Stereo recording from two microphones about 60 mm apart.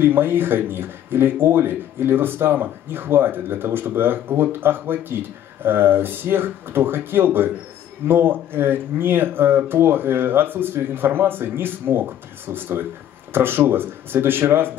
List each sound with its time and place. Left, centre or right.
0.0 s speech: right